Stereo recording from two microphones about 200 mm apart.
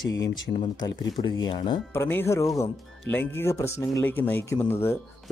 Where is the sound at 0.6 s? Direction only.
25° left (ahead or behind).